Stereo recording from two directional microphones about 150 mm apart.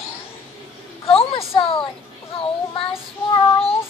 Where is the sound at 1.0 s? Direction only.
40° left (ahead or behind).